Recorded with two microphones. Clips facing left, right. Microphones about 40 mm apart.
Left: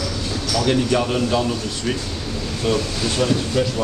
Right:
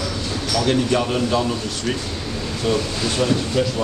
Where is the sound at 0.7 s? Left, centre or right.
Centre.